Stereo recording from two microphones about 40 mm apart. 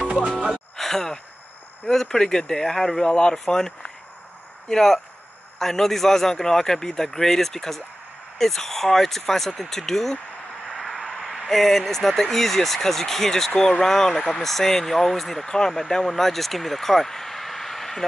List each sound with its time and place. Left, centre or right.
0.1 s speech: right
0.7 s a sound: centre
1.9 s a man's voice: centre